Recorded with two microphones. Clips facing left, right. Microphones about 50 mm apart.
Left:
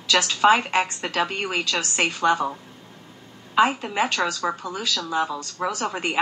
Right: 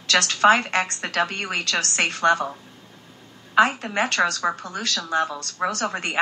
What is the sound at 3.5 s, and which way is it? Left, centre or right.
A woman's voice, right.